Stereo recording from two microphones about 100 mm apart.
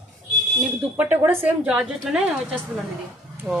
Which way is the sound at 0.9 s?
20° right (ahead or behind).